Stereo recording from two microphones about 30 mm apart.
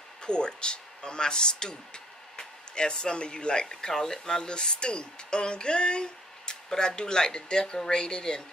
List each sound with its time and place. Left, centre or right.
0.2 s speech: left
4.5 s speech: left